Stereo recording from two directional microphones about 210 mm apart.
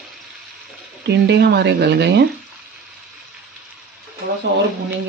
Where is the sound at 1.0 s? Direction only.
55° right (ahead or behind).